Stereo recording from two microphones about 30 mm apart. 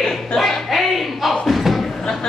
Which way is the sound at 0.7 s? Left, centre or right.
Centre.